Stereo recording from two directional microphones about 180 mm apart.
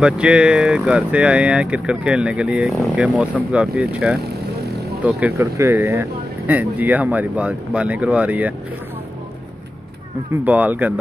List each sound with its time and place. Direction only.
0.0 s speech: 5° right (ahead or behind)
4.2 s vehicle: 60° right (ahead or behind)
5.0 s speech: 10° right (ahead or behind)
10.3 s speech: 10° right (ahead or behind)